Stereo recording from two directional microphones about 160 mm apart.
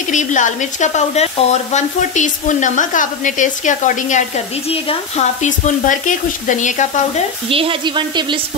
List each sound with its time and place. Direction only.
0.1 s speech: 50° left (ahead or behind)
4.6 s speech: 40° left (ahead or behind)
7.4 s speech: 35° right (ahead or behind)